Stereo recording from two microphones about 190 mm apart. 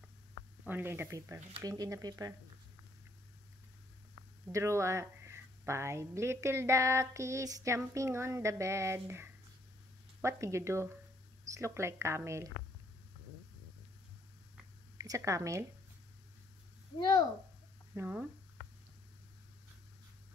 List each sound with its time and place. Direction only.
0.7 s speech: 10° right (ahead or behind)
4.5 s speech: 15° right (ahead or behind)
15.0 s speech: 15° right (ahead or behind)
17.9 s speech: 10° right (ahead or behind)